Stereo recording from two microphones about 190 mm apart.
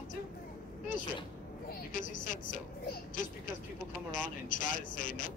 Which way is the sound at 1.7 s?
45° left (ahead or behind).